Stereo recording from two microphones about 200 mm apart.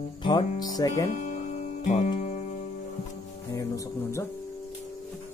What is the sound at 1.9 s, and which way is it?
Music, 35° left (ahead or behind).